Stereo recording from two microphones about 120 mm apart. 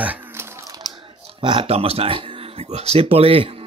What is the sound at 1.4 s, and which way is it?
Speech, 45° right (ahead or behind).